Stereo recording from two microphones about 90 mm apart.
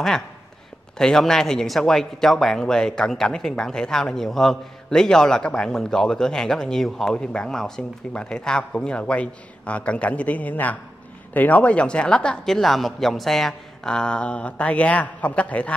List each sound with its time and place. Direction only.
0.9 s speech: 5° left (ahead or behind)